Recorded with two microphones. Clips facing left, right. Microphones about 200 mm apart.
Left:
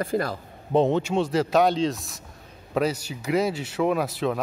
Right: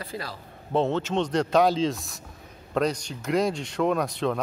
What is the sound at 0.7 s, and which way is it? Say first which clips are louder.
Speech: left 3 dB; 15° left (ahead or behind).